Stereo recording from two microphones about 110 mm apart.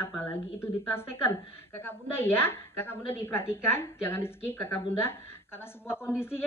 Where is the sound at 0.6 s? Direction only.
20° left (ahead or behind).